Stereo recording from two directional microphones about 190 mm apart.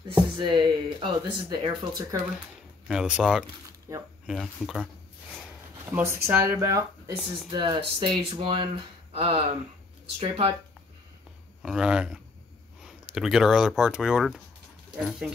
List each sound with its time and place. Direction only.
0.4 s speech: 25° right (ahead or behind)
2.9 s speech: 5° right (ahead or behind)
3.9 s speech: 15° right (ahead or behind)
4.3 s speech: centre (ahead or behind)
5.9 s speech: 10° right (ahead or behind)
7.2 s speech: centre (ahead or behind)
7.5 s speech: 25° right (ahead or behind)
11.6 s speech: 5° right (ahead or behind)